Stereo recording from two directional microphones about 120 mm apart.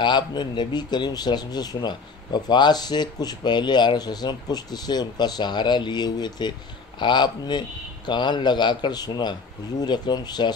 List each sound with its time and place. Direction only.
0.0 s speech: 40° left (ahead or behind)